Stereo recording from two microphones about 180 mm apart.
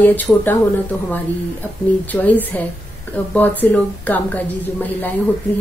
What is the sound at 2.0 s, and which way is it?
A woman's voice, 10° left (ahead or behind).